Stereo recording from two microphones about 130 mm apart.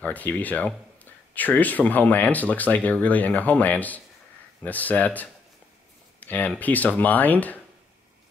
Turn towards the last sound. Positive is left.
turn(degrees=15)  # may be behind; listen again after turning